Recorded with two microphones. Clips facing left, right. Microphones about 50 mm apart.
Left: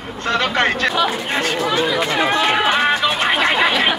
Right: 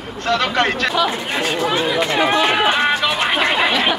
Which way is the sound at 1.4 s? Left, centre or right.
Centre.